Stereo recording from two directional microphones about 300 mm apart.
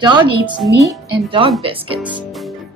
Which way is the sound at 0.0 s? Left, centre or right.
Centre.